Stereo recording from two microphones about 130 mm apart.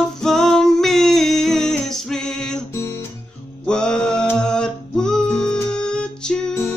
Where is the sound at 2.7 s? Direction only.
20° left (ahead or behind).